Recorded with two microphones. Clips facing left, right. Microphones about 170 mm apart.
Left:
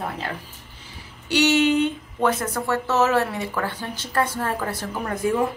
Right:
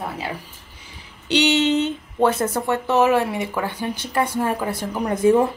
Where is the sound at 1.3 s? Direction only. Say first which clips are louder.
Even; 20° right (ahead or behind).